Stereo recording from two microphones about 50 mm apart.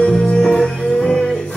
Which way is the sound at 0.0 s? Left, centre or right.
Centre.